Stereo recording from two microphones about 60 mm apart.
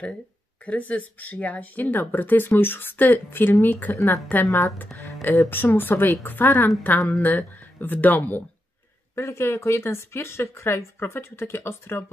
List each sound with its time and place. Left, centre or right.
0.7 s speech: left
4.5 s speech: left
5.5 s speech: left
9.1 s speech: left